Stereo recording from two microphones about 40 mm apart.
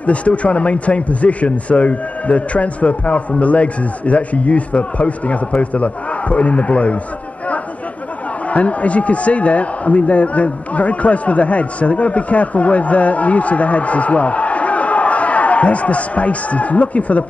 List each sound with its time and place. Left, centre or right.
0.0 s a man's voice: left
8.5 s a man's voice: left